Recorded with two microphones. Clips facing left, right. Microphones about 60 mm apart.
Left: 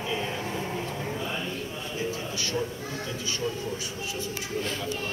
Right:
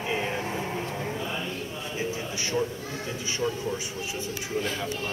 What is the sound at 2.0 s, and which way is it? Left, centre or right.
Speech, right.